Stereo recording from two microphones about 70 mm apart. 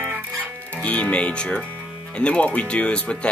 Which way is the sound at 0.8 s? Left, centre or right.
Centre.